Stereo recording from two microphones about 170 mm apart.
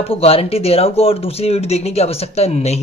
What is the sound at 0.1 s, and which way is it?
Speech, 35° left (ahead or behind).